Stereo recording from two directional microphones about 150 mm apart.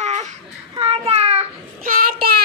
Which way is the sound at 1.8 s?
70° right (ahead or behind).